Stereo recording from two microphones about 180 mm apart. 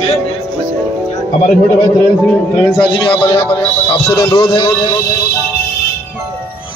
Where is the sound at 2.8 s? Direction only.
30° left (ahead or behind).